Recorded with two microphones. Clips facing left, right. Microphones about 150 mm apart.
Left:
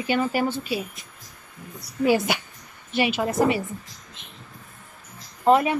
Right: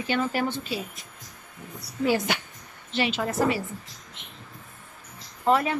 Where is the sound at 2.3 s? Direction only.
10° left (ahead or behind).